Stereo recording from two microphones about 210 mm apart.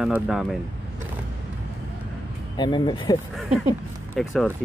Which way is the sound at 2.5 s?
20° left (ahead or behind).